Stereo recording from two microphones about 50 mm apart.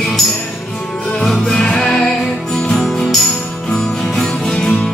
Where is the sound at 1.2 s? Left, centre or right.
Centre.